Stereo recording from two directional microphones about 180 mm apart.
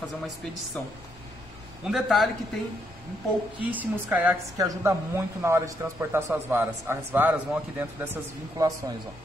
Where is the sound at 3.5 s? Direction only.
10° right (ahead or behind).